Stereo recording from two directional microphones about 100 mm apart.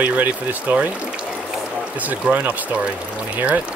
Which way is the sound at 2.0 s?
15° right (ahead or behind).